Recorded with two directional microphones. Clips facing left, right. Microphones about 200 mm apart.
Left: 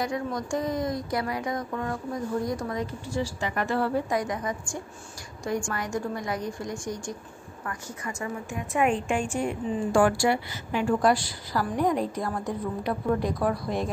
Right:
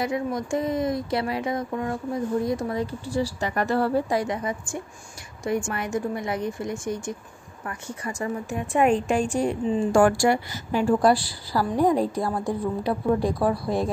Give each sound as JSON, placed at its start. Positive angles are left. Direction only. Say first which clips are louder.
{"t": 0.0, "sound": "a woman's voice", "louder": "right 3 dB", "side_deg": -25}
{"t": 7.6, "sound": "a woman's voice", "louder": "right 3 dB", "side_deg": -35}
{"t": 10.0, "sound": "a woman's voice", "louder": "right 3 dB", "side_deg": -45}